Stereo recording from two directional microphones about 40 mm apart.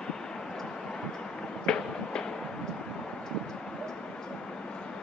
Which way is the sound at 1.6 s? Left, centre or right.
Centre.